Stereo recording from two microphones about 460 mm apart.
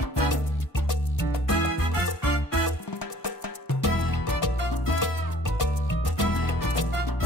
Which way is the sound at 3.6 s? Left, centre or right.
Left.